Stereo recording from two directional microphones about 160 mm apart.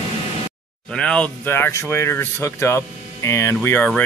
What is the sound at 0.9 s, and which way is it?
Speech, 5° left (ahead or behind).